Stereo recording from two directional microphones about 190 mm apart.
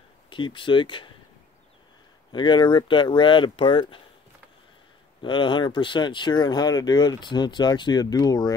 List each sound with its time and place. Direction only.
0.3 s speech: 25° left (ahead or behind)
2.3 s speech: 25° left (ahead or behind)
5.2 s speech: 25° left (ahead or behind)